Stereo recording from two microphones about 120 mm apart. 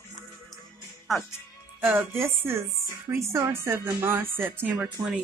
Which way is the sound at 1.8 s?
15° right (ahead or behind).